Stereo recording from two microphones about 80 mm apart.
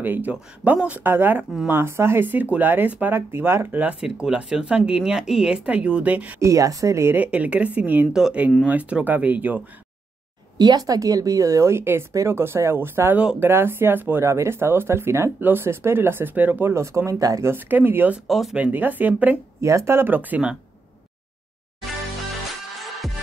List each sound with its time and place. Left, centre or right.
0.0 s speech: right
3.8 s speech: centre
6.4 s speech: right
7.2 s speech: centre
8.1 s speech: centre
10.6 s speech: right
16.7 s speech: right
17.5 s speech: right
18.2 s speech: centre
18.6 s speech: right
19.6 s speech: right; by 20.5 s centre
21.8 s music: centre